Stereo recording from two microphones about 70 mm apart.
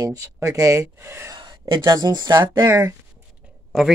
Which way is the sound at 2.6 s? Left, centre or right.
Right.